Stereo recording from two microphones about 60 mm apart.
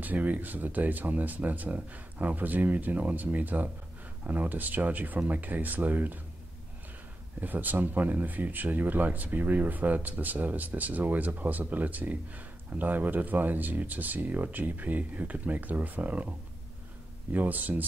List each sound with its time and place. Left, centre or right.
0.0 s speech: right
7.3 s speech: right
17.3 s speech: right